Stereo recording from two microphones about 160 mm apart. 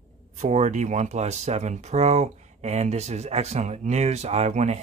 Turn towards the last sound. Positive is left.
turn(degrees=-45)  # may be behind; listen again after turning